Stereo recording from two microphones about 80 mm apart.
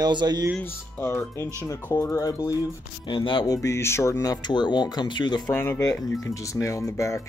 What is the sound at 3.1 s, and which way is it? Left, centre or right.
Speech, left.